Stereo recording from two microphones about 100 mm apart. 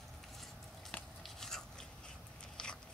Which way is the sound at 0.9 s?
15° left (ahead or behind).